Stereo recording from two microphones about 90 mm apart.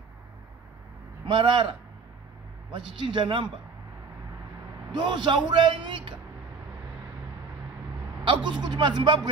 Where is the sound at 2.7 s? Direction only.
60° right (ahead or behind).